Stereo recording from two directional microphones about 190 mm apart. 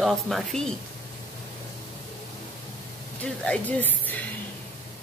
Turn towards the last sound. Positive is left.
turn(degrees=10)  # may be behind; listen again after turning